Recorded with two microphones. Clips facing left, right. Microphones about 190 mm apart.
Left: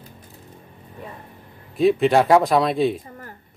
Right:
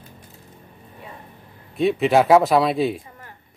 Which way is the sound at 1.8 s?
Centre (ahead or behind).